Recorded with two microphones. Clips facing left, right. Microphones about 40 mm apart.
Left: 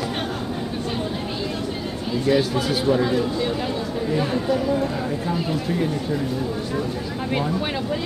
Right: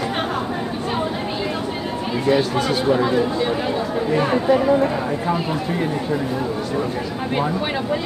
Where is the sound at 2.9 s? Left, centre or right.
Centre.